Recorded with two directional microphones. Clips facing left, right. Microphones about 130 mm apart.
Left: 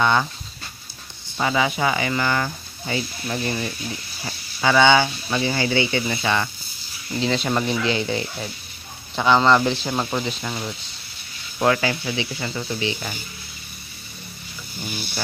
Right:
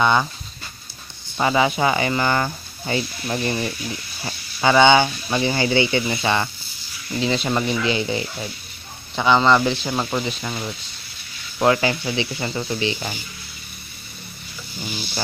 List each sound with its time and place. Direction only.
0.0 s speech: 15° right (ahead or behind)
1.4 s speech: 35° right (ahead or behind)
7.2 s speech: 5° right (ahead or behind)
11.6 s speech: 25° right (ahead or behind)